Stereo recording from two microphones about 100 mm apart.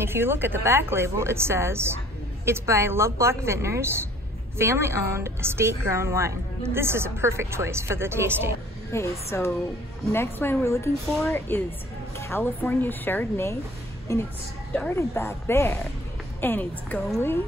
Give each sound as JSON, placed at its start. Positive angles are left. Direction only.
{"t": 0.0, "sound": "a woman's voice", "side_deg": -25}
{"t": 8.9, "sound": "a woman's voice", "side_deg": 30}
{"t": 14.7, "sound": "speech", "side_deg": 20}